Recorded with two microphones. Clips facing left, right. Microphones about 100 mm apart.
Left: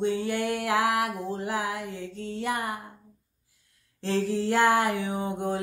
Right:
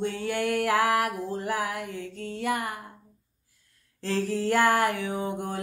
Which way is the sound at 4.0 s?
20° left (ahead or behind).